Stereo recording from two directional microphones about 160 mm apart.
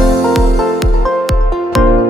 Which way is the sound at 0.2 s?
Centre (ahead or behind).